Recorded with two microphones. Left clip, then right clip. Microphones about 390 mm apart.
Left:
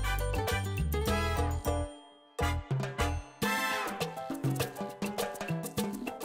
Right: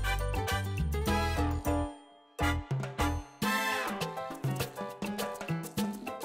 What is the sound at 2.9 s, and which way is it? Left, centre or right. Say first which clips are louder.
Music: right 3 dB; left.